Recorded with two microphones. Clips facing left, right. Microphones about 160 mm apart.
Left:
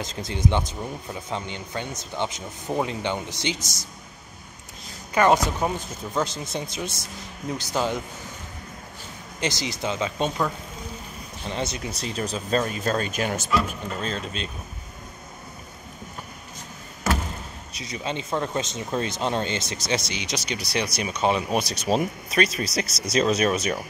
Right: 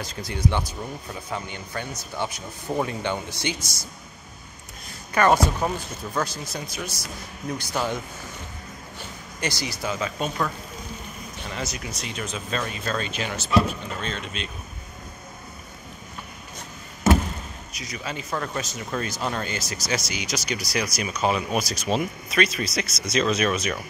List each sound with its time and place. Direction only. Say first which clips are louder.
0.0 s speech: left 1 dB; 25° left (ahead or behind)
5.1 s speech: even; 15° left (ahead or behind)
9.4 s speech: left 2 dB; 20° left (ahead or behind)
11.4 s speech: left 4 dB; 30° left (ahead or behind)
17.7 s speech: left 3 dB; 25° left (ahead or behind)